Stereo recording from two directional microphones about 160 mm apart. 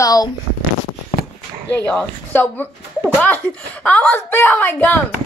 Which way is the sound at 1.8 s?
10° left (ahead or behind).